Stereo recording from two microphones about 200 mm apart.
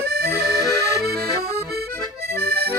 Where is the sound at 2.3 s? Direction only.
50° right (ahead or behind).